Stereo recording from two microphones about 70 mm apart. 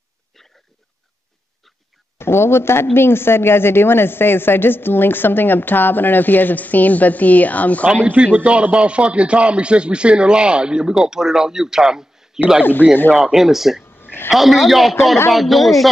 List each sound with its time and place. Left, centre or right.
2.1 s speech: left
7.9 s a man's voice: centre
13.9 s a sound: left
14.3 s a man's voice: centre